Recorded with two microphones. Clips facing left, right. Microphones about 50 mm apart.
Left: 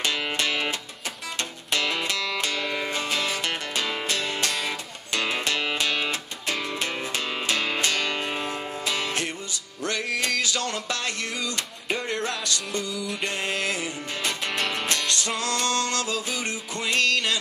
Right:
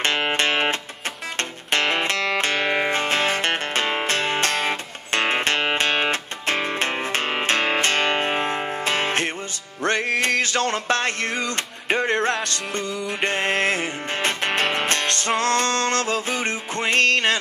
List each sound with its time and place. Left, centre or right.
0.0 s music: right
9.8 s a sound: right
12.4 s music: right